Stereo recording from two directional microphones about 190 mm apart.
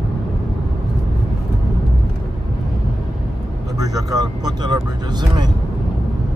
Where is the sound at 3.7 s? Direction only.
20° right (ahead or behind).